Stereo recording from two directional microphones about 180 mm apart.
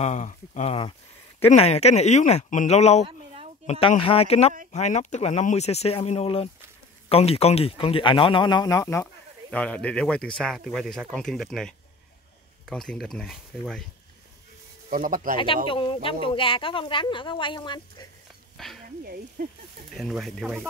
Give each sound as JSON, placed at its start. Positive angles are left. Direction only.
{"t": 0.0, "sound": "speech", "side_deg": 40}
{"t": 14.9, "sound": "speech", "side_deg": -50}
{"t": 15.3, "sound": "speech", "side_deg": 30}
{"t": 18.6, "sound": "speech", "side_deg": 5}
{"t": 19.4, "sound": "speech", "side_deg": -45}
{"t": 19.9, "sound": "speech", "side_deg": 0}